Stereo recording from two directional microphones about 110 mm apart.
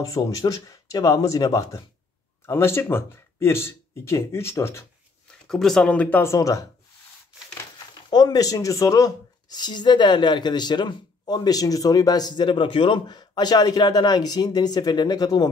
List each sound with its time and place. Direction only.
0.0 s speech: 30° left (ahead or behind)
2.4 s speech: 20° left (ahead or behind)
5.5 s speech: 5° left (ahead or behind)
6.3 s speech: 30° left (ahead or behind)
8.1 s speech: 40° left (ahead or behind)